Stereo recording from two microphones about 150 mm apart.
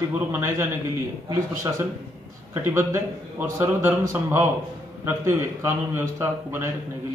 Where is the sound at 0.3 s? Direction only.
15° right (ahead or behind).